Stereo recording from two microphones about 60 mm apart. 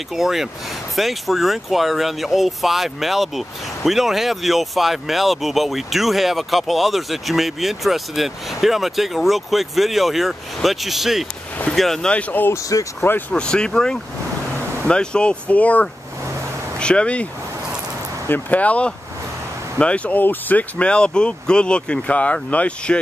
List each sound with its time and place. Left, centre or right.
0.1 s speech: centre
12.1 s speech: left
12.5 s speech: left
13.3 s speech: centre
18.3 s speech: left